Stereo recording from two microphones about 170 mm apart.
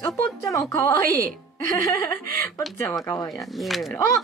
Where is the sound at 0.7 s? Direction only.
15° left (ahead or behind).